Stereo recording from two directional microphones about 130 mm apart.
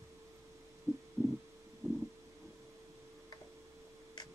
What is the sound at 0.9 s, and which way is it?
Stomach rumble, 25° right (ahead or behind).